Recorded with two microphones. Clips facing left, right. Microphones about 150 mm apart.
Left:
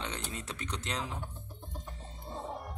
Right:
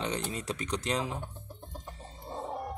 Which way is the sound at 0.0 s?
15° right (ahead or behind).